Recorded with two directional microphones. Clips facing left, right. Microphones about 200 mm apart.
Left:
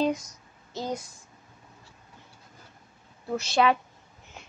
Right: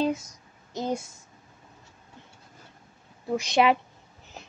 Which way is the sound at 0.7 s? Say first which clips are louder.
Right 3 dB; 25° right (ahead or behind).